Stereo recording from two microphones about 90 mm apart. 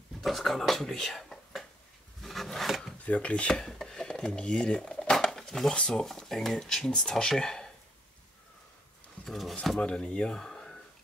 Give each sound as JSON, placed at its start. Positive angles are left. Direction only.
{"t": 0.2, "sound": "speech", "side_deg": 0}
{"t": 2.2, "sound": "filing", "side_deg": 0}
{"t": 3.1, "sound": "dishes", "side_deg": 15}
{"t": 9.2, "sound": "speech", "side_deg": 0}